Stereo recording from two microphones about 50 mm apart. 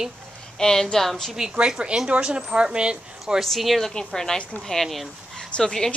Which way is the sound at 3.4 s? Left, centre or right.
Centre.